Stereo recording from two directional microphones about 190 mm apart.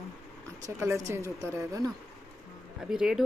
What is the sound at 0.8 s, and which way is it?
Speech, 15° right (ahead or behind).